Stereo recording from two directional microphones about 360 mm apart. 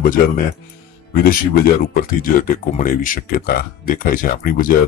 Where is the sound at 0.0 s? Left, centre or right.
Left.